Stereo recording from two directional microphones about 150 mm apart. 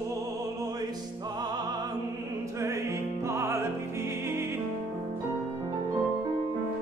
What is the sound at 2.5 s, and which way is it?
Music, 20° right (ahead or behind).